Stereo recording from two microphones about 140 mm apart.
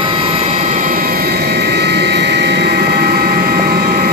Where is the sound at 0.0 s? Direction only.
40° right (ahead or behind); by 1.3 s 90° right.